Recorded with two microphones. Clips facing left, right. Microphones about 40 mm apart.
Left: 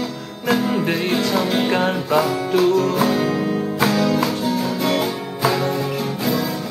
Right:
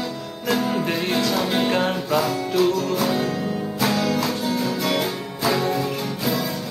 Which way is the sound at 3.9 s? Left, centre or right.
Centre.